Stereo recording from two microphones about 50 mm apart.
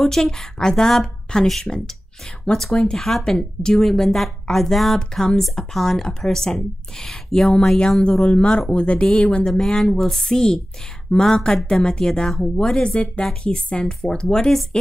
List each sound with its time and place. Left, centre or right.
0.0 s speech: centre
8.0 s speech: left
9.7 s speech: centre